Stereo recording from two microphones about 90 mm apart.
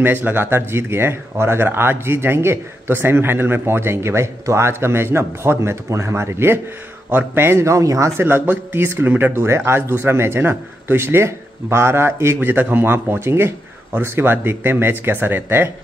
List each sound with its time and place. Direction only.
0.0 s speech: 20° right (ahead or behind); by 8.3 s 35° right (ahead or behind)
8.3 s speech: 25° right (ahead or behind)